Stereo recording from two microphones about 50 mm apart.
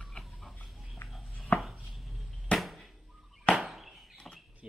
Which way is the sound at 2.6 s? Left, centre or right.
Centre.